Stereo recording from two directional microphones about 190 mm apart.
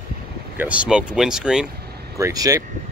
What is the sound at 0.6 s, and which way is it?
Speech, 5° right (ahead or behind).